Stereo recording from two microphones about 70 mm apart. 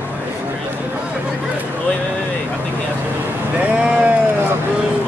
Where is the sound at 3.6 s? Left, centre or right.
Centre.